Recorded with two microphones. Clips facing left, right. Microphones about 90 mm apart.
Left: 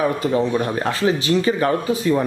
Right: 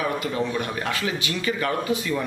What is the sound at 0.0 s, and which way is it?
Speech, 35° left (ahead or behind).